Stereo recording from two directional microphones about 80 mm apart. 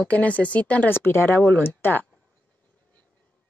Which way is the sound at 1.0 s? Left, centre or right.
Left.